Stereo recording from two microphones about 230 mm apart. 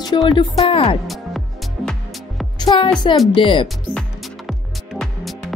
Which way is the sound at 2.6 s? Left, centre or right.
Centre.